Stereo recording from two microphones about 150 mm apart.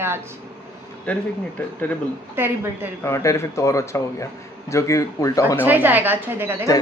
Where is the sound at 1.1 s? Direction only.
10° left (ahead or behind).